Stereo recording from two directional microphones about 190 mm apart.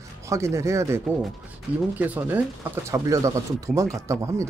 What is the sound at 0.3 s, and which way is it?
Speech, 15° right (ahead or behind).